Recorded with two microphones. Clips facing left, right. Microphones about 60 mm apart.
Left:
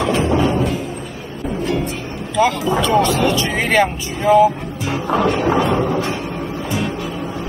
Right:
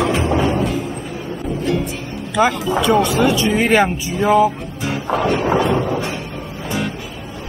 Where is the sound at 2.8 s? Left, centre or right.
Centre.